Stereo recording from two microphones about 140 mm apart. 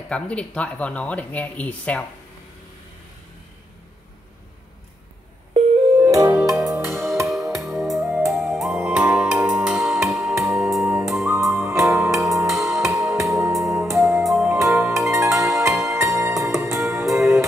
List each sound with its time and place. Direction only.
0.1 s speech: 10° left (ahead or behind)
6.0 s music: 20° right (ahead or behind)
7.6 s music: centre (ahead or behind)
11.1 s music: 20° right (ahead or behind)